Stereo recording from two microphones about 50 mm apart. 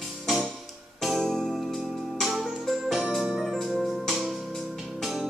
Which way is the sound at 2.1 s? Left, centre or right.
Centre.